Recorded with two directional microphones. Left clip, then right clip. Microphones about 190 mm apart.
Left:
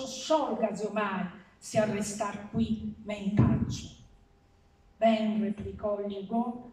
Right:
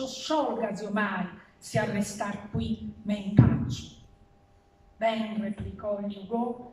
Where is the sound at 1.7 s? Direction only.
5° left (ahead or behind).